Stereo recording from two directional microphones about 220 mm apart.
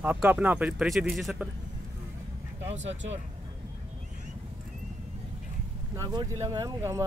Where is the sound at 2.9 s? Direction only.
60° right (ahead or behind).